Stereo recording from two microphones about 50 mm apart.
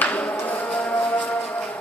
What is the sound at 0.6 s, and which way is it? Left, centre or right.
Music, centre.